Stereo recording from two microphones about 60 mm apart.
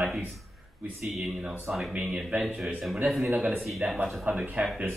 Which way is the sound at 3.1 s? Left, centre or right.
Centre.